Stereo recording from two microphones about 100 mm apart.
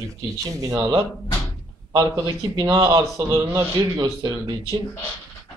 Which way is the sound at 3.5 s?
30° right (ahead or behind).